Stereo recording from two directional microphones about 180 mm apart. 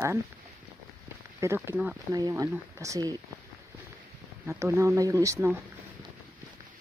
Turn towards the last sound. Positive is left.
turn(degrees=-15)  # may be behind; listen again after turning